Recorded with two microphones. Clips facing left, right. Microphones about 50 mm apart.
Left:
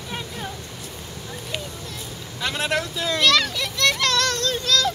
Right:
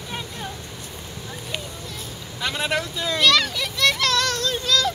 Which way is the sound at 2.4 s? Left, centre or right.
Centre.